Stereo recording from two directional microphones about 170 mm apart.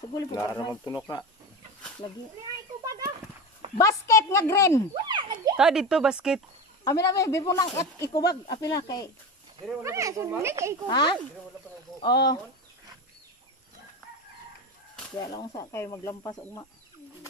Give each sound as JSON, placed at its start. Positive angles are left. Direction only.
{"t": 0.1, "sound": "speech", "side_deg": 20}
{"t": 2.8, "sound": "a sound", "side_deg": -20}
{"t": 3.7, "sound": "speech", "side_deg": 20}
{"t": 4.9, "sound": "a sound", "side_deg": -25}
{"t": 5.6, "sound": "speech", "side_deg": -5}
{"t": 6.8, "sound": "speech", "side_deg": 20}
{"t": 9.8, "sound": "speech", "side_deg": -20}
{"t": 10.9, "sound": "speech", "side_deg": 25}
{"t": 15.1, "sound": "speech", "side_deg": 20}